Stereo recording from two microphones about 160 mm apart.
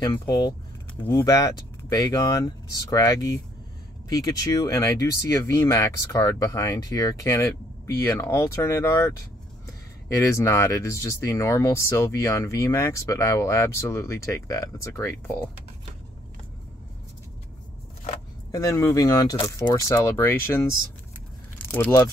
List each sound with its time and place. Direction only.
0.0 s speech: 20° left (ahead or behind)
18.5 s speech: 20° left (ahead or behind)